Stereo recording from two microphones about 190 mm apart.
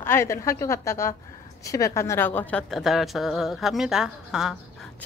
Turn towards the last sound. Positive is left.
turn(degrees=-5)  # may be behind; listen again after turning